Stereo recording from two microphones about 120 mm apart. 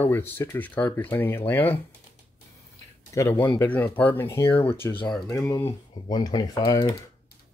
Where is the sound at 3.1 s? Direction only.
20° left (ahead or behind).